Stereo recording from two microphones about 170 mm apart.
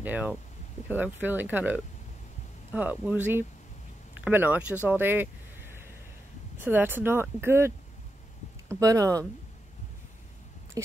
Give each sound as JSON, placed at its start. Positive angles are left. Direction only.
{"t": 0.0, "sound": "speech", "side_deg": -10}
{"t": 4.8, "sound": "a sound", "side_deg": -10}
{"t": 6.6, "sound": "speech", "side_deg": -10}